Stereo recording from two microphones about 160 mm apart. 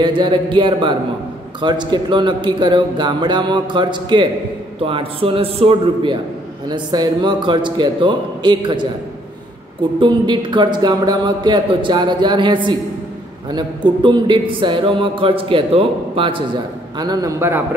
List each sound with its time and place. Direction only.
0.0 s speech: 30° right (ahead or behind)
6.7 s speech: 25° right (ahead or behind)
9.9 s speech: 30° right (ahead or behind)